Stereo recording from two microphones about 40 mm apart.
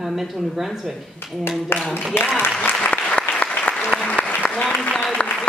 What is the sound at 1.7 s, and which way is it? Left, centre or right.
Speech, left.